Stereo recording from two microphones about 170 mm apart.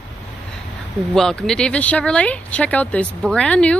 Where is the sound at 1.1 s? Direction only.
5° left (ahead or behind).